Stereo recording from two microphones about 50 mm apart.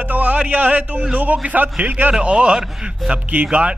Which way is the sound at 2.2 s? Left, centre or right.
Right.